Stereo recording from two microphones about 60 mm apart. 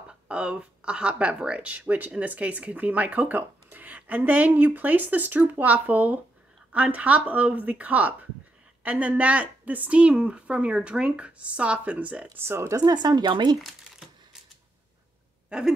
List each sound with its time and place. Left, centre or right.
0.3 s speech: centre
12.4 s speech: right
13.0 s speech: right
15.5 s a sound: centre